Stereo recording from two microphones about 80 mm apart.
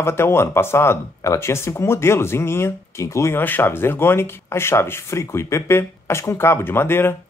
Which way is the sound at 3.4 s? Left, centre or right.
Left.